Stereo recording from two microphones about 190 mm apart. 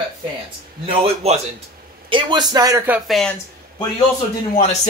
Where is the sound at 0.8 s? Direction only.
30° right (ahead or behind).